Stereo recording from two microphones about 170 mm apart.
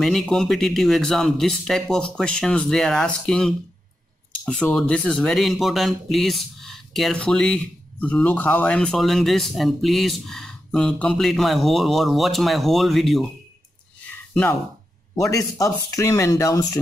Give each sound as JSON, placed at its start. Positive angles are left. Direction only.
{"t": 0.0, "sound": "speech", "side_deg": 0}
{"t": 15.1, "sound": "speech", "side_deg": 20}